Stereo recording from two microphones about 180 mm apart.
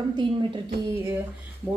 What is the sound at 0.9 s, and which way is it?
Speech, 10° right (ahead or behind).